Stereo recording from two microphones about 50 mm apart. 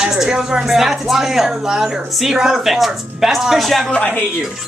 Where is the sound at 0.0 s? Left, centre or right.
Centre.